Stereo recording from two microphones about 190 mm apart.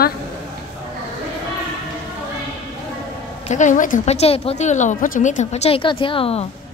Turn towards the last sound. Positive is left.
turn(degrees=30)  # may be behind; listen again after turning